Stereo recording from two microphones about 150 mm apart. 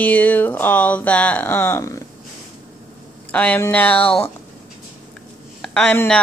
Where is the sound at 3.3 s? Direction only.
10° left (ahead or behind).